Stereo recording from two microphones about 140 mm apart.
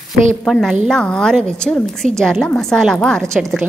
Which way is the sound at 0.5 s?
Centre (ahead or behind).